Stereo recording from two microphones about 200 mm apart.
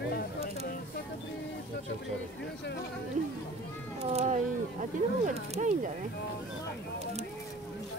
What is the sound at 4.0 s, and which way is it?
Cat, 30° right (ahead or behind).